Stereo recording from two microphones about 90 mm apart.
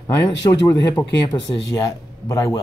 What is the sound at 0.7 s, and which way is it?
Speech, 55° left (ahead or behind).